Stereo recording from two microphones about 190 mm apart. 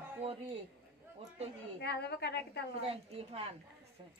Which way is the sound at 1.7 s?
60° left (ahead or behind).